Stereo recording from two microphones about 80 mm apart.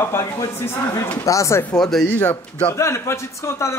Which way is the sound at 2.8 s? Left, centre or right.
Left.